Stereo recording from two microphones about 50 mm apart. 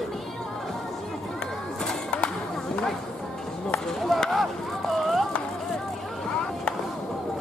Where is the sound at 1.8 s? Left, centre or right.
Centre.